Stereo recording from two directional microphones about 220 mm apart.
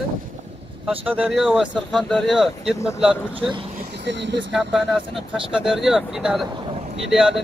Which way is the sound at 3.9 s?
55° right (ahead or behind).